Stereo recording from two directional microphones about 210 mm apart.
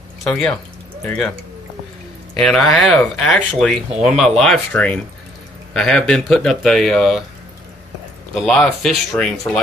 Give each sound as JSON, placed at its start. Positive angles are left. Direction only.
{"t": 0.2, "sound": "speech", "side_deg": 5}
{"t": 2.3, "sound": "speech", "side_deg": 0}
{"t": 8.4, "sound": "speech", "side_deg": 0}